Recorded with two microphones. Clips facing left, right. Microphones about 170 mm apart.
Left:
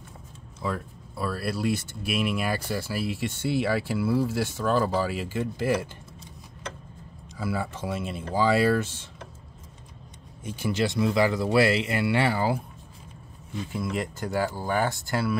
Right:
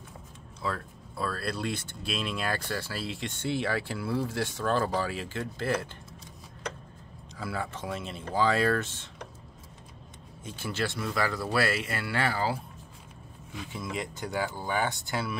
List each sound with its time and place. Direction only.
0.6 s speech: 10° left (ahead or behind)
7.3 s speech: 10° left (ahead or behind)
10.4 s speech: 15° left (ahead or behind)
13.7 s speech: 5° left (ahead or behind)